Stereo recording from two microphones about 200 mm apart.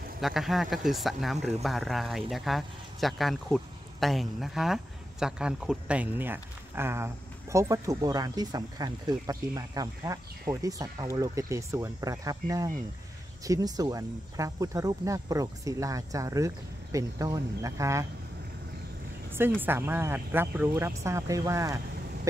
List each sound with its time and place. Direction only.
0.2 s speech: centre (ahead or behind)
19.3 s speech: 10° right (ahead or behind)